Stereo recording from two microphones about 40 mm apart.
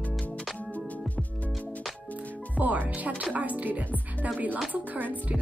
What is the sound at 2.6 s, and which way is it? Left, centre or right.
Speech, right.